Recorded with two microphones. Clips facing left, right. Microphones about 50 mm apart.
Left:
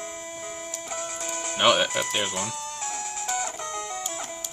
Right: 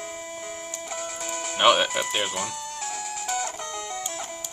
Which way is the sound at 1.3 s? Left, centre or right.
Centre.